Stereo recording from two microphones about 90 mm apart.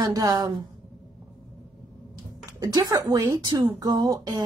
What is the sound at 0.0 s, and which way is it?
Speech, 45° right (ahead or behind).